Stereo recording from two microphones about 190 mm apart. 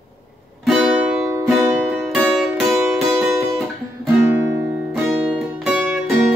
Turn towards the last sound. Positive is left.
turn(degrees=0)  # may be behind; listen again after turning